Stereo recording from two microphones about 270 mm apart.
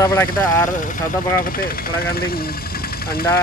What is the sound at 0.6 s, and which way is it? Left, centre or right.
Speech, left.